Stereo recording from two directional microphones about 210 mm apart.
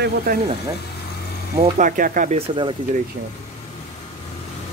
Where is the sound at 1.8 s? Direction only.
40° right (ahead or behind); by 2.8 s 25° right (ahead or behind).